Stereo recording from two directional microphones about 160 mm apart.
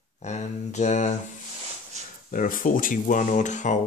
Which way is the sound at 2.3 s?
60° left (ahead or behind).